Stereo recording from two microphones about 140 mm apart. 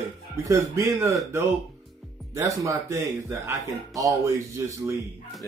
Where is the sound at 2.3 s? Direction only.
20° right (ahead or behind).